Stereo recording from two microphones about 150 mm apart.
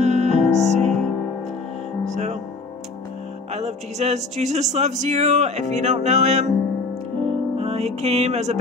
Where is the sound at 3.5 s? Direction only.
45° right (ahead or behind).